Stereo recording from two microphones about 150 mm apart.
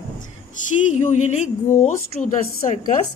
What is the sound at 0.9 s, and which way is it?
A woman's voice, 50° left (ahead or behind).